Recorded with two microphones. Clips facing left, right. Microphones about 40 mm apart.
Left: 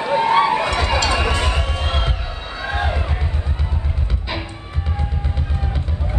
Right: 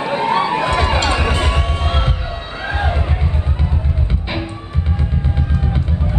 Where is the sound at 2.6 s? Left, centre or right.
Right.